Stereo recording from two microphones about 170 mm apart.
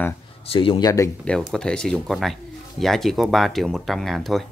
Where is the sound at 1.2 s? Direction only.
5° left (ahead or behind).